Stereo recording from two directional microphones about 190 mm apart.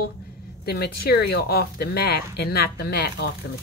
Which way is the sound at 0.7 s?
55° left (ahead or behind).